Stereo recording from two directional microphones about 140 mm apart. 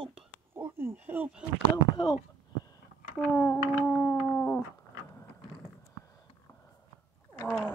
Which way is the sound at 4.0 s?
15° left (ahead or behind).